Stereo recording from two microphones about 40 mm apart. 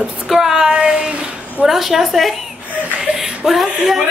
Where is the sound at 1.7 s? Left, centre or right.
Centre.